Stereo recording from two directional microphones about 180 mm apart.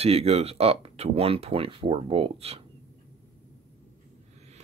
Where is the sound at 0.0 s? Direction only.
35° right (ahead or behind).